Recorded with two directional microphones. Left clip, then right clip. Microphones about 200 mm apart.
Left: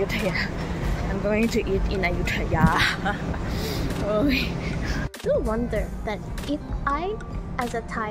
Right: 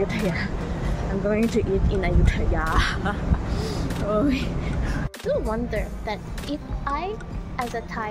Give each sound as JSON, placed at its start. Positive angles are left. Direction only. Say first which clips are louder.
{"t": 0.1, "sound": "speech", "louder": "left 1 dB", "side_deg": -5}
{"t": 3.9, "sound": "a sound", "louder": "even", "side_deg": -5}
{"t": 5.3, "sound": "a child's voice", "louder": "left 1 dB", "side_deg": 10}